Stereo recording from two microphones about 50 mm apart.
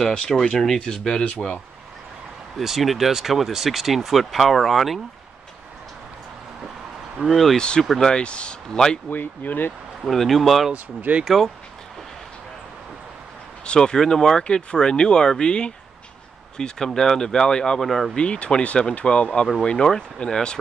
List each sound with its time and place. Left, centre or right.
0.3 s speech: centre
2.6 s speech: centre
7.2 s speech: centre
7.5 s speech: centre
9.1 s speech: left
10.0 s speech: centre
10.7 s speech: right
13.7 s speech: centre
17.8 s speech: centre
18.1 s speech: left